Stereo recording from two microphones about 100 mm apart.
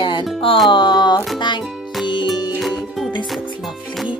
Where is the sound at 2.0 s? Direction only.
45° left (ahead or behind).